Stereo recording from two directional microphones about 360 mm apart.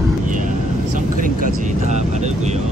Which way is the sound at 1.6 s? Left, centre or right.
Centre.